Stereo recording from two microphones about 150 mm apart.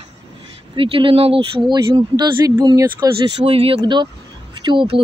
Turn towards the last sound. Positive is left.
turn(degrees=-30)  # may be behind; listen again after turning